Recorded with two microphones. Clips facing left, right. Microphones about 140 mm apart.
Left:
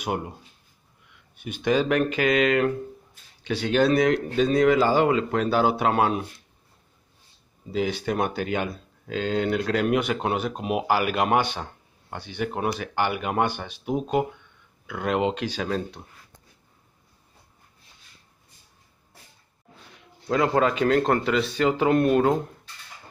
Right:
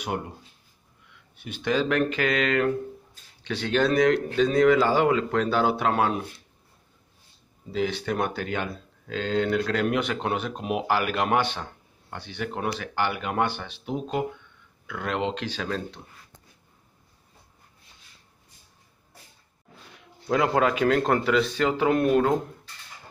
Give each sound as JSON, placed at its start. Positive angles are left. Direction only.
{"t": 1.3, "sound": "speech", "side_deg": 15}
{"t": 7.7, "sound": "speech", "side_deg": 15}
{"t": 20.2, "sound": "speech", "side_deg": -5}